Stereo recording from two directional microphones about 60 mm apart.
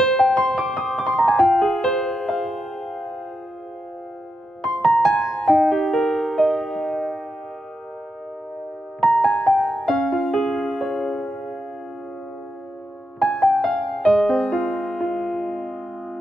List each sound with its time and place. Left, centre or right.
0.2 s music: centre
4.8 s music: centre
5.2 s music: centre
9.0 s music: centre
13.2 s music: centre